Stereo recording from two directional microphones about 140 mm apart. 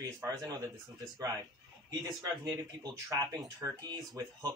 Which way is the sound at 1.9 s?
25° right (ahead or behind).